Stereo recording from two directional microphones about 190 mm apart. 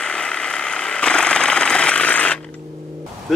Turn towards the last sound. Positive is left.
turn(degrees=0)  # may be behind; listen again after turning